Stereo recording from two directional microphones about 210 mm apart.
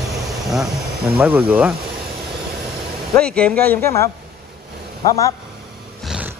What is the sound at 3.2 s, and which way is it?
Speech, 5° left (ahead or behind).